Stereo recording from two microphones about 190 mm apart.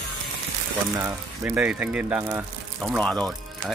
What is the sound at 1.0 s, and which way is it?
Speech, 15° right (ahead or behind).